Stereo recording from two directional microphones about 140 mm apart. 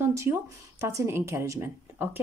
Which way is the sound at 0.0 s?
20° right (ahead or behind).